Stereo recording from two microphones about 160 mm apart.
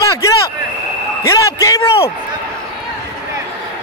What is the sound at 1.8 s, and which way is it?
Speech, 35° left (ahead or behind).